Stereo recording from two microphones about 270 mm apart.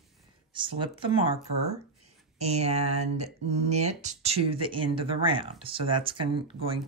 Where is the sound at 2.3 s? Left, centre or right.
Right.